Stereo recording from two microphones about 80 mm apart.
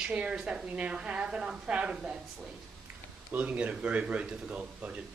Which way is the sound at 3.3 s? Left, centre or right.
Centre.